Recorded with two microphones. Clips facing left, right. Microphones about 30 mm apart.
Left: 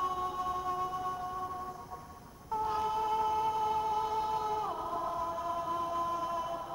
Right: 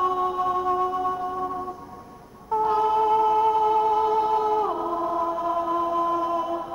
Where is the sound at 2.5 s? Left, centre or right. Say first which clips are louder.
Right 11 dB; right.